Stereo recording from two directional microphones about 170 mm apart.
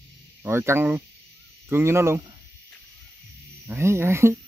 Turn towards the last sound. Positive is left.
turn(degrees=-15)  # may be behind; listen again after turning